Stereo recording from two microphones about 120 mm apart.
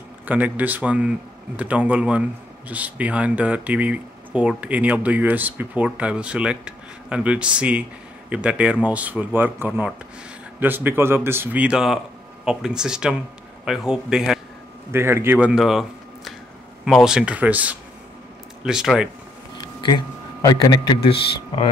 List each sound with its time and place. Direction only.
0.3 s a man's voice: 15° right (ahead or behind)
10.6 s a man's voice: 15° right (ahead or behind)
14.9 s a man's voice: 20° right (ahead or behind)
16.8 s a man's voice: 5° right (ahead or behind)
19.6 s a sound: 40° left (ahead or behind)